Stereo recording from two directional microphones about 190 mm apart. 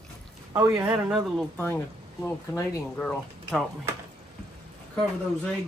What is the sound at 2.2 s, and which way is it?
Speech, 10° left (ahead or behind).